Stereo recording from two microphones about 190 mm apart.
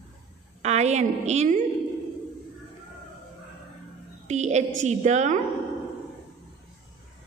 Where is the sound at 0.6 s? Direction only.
35° right (ahead or behind).